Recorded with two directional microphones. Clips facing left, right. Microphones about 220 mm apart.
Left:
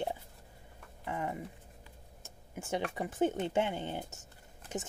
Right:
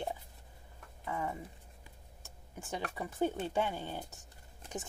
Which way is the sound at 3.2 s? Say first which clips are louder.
Left 2 dB; 20° left (ahead or behind).